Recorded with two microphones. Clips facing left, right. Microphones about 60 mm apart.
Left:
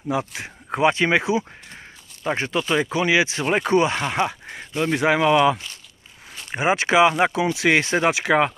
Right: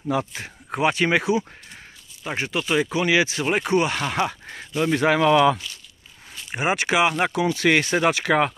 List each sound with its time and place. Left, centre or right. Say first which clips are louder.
0.7 s speech: left 2 dB; left
2.2 s speech: left 3 dB; left
3.4 s speech: left 2 dB; left
3.7 s speech: left 3 dB; left
6.6 s speech: left 4 dB; left